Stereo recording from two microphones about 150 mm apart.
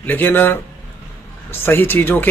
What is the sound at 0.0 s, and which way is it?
Speech, 15° left (ahead or behind).